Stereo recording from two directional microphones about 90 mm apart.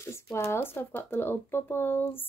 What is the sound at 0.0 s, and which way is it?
Speech, 30° left (ahead or behind).